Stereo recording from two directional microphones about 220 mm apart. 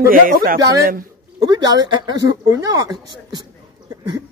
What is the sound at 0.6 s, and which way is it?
Speech, 15° right (ahead or behind).